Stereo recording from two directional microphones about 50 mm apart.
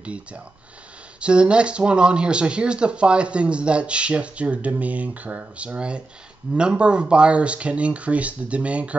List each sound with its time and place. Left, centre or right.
0.0 s speech: right